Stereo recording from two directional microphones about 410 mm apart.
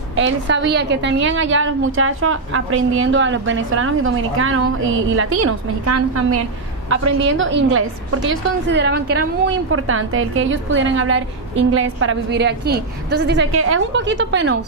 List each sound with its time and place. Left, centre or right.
0.1 s a woman's voice: right